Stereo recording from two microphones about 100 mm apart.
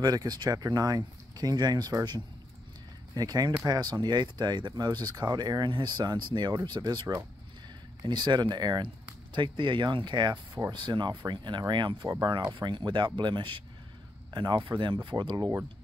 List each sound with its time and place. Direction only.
0.0 s speech: 40° right (ahead or behind)